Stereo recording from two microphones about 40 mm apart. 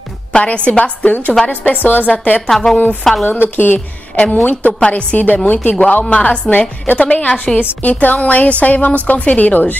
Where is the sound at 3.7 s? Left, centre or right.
Left.